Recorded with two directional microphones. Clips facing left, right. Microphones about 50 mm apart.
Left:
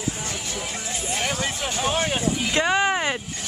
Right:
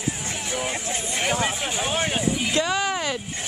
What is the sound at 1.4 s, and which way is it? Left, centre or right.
Speech, centre.